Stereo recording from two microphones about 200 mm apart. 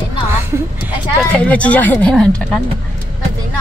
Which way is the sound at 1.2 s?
5° left (ahead or behind).